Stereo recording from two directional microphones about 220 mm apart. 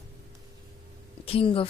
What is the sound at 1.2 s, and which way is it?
Speech, 25° left (ahead or behind).